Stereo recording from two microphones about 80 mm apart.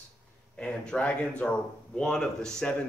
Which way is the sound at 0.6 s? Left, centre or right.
Centre.